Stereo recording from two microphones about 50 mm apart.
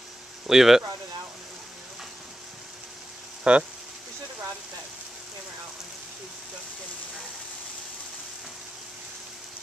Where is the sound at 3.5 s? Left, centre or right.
Centre.